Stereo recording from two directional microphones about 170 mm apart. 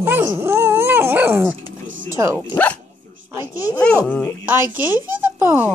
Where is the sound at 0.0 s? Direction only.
15° right (ahead or behind).